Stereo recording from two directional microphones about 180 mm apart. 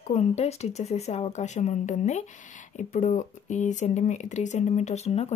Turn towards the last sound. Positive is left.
turn(degrees=35)  # may be behind; listen again after turning